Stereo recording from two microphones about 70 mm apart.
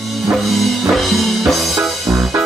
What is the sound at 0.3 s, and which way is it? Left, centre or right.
Music, centre.